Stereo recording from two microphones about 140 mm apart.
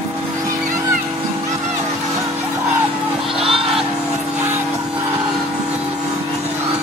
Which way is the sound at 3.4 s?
40° right (ahead or behind).